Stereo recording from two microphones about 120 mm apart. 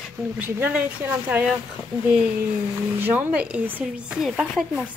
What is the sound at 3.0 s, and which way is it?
Speech, 15° right (ahead or behind).